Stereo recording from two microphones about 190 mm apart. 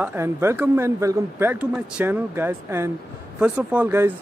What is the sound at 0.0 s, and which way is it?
Speech, 10° right (ahead or behind).